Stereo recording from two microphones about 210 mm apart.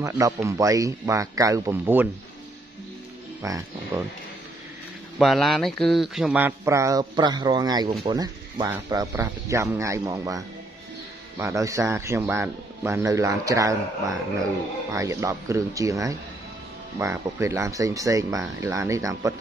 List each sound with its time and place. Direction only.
0.0 s speech: 15° right (ahead or behind)
3.4 s speech: 15° right (ahead or behind)
5.2 s speech: centre (ahead or behind); by 19.3 s 15° right (ahead or behind)